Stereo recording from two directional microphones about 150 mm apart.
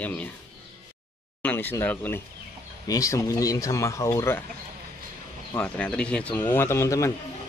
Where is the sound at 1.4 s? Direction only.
10° left (ahead or behind).